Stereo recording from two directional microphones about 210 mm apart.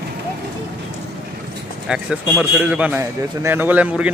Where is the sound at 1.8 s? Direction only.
5° right (ahead or behind).